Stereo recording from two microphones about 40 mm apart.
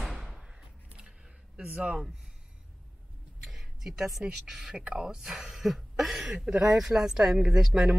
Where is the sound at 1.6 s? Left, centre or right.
Right.